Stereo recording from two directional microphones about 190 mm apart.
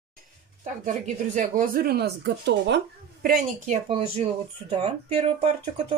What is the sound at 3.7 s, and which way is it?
Speech, 35° right (ahead or behind).